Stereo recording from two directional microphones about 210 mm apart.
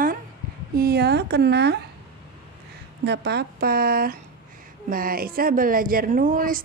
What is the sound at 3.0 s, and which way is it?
Speech, 55° right (ahead or behind).